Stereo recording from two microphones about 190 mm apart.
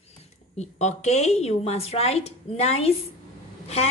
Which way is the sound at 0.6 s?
35° left (ahead or behind).